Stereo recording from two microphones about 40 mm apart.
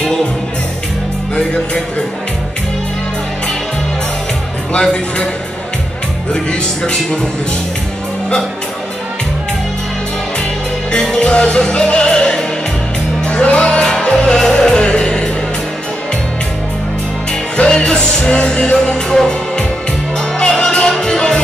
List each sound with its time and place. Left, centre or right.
6.3 s speech: centre
10.9 s music: left
13.2 s music: left
14.1 s music: centre
17.6 s music: left
19.0 s music: centre